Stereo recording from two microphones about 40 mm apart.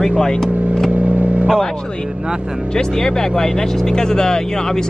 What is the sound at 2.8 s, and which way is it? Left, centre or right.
Speech, centre.